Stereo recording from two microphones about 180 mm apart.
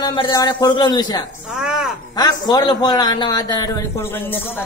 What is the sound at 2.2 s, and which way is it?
A man's voice, 20° left (ahead or behind).